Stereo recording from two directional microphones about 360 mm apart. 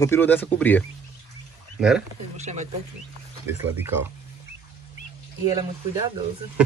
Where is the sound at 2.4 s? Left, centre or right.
Centre.